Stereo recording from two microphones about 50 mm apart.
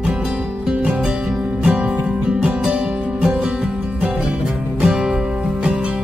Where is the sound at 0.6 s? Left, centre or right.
Right.